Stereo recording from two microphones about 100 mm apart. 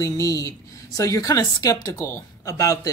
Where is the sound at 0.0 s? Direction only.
30° left (ahead or behind).